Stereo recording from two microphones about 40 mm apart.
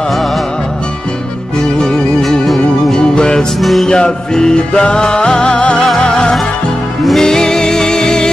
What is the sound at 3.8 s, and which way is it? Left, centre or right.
Music, centre.